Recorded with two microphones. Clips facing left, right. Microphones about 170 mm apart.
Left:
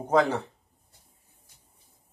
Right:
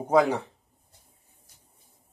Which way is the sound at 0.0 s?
10° right (ahead or behind).